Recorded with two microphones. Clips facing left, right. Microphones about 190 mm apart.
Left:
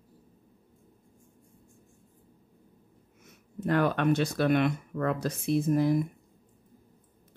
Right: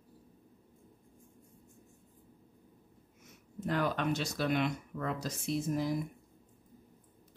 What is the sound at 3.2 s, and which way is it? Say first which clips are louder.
Speech: left 5 dB; 60° left (ahead or behind).